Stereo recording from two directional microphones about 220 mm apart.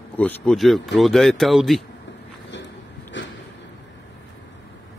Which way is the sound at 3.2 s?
55° left (ahead or behind).